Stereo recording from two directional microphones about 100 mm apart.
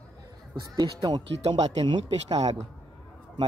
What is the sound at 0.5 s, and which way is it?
Speech, 45° right (ahead or behind).